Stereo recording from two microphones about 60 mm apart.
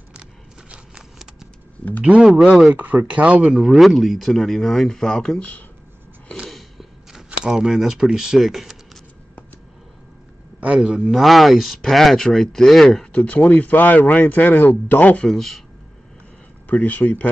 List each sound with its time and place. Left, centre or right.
0.1 s a sound: centre
2.7 s speech: right
3.7 s speech: centre
5.4 s speech: left
6.5 s a sound: centre
7.4 s speech: centre
10.6 s a man's voice: right
11.1 s speech: centre
12.8 s speech: centre; by 15.2 s left
15.2 s speech: centre
16.6 s speech: left